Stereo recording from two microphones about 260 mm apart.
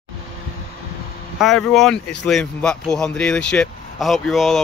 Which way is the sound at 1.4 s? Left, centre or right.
Centre.